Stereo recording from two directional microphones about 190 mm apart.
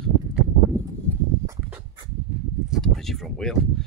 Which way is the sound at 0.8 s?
10° left (ahead or behind).